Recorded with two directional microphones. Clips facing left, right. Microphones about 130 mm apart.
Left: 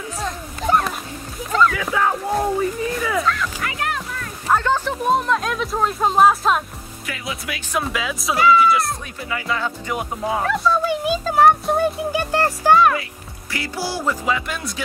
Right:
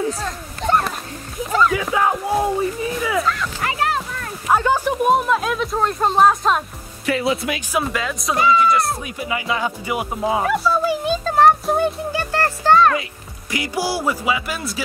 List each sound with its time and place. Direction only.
0.2 s a sound: 5° left (ahead or behind)
2.0 s speech: 10° right (ahead or behind)
3.6 s music: 30° right (ahead or behind)
4.5 s a sound: 10° right (ahead or behind)
5.1 s speech: 5° right (ahead or behind)
7.1 s speech: 30° right (ahead or behind)
7.7 s speech: centre (ahead or behind)
9.5 s speech: 5° right (ahead or behind)
12.1 s speech: 15° left (ahead or behind)
13.5 s speech: 15° right (ahead or behind)